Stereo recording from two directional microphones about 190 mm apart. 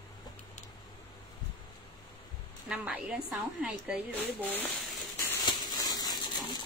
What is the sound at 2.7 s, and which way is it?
A woman's voice, 5° right (ahead or behind).